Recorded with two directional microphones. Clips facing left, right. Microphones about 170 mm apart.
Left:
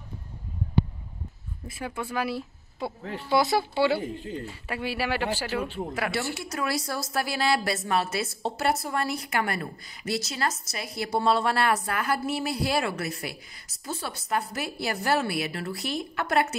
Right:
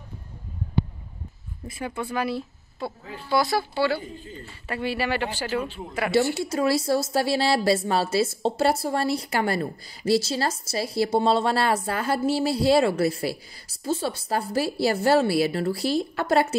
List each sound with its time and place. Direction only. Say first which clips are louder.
1.7 s speech: right 3 dB; 5° left (ahead or behind)
3.3 s speech: even; 20° left (ahead or behind)
4.0 s speech: left 5 dB; 75° left (ahead or behind)
4.6 s speech: right 3 dB; 5° left (ahead or behind)
6.3 s a woman's voice: right 7 dB; 30° right (ahead or behind)